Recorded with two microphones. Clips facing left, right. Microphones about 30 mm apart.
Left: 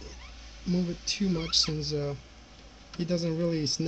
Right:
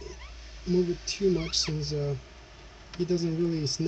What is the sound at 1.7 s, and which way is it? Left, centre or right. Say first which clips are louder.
Speech: even; left.